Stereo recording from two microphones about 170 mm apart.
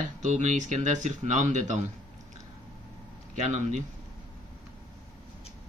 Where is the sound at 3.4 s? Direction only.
45° right (ahead or behind).